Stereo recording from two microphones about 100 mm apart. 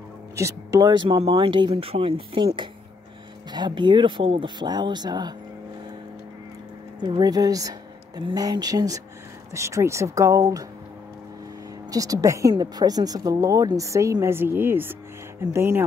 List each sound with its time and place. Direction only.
0.4 s a woman's voice: 30° right (ahead or behind); by 1.7 s 55° right (ahead or behind)
1.7 s speech: 70° right (ahead or behind); by 5.3 s 45° right (ahead or behind)
7.0 s a woman's voice: 50° right (ahead or behind)
11.9 s a woman's voice: 35° right (ahead or behind)